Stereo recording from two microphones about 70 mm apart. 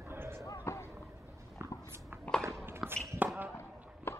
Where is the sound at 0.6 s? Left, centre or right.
Left.